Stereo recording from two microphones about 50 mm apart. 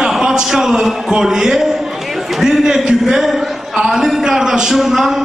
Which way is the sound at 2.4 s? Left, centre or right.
Centre.